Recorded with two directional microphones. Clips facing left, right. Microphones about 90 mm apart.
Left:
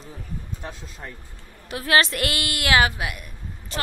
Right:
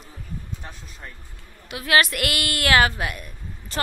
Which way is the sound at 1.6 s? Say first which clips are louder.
Even; 35° left (ahead or behind).